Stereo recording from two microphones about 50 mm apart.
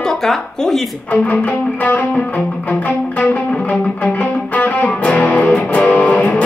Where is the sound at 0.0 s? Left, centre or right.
Centre.